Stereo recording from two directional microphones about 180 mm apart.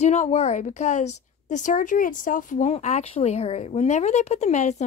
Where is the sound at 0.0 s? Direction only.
40° left (ahead or behind).